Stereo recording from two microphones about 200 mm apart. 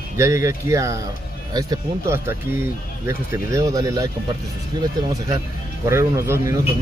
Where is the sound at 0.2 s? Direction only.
15° right (ahead or behind).